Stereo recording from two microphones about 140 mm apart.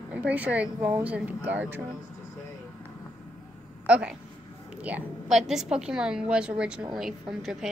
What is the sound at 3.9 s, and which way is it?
A woman's voice, 10° right (ahead or behind).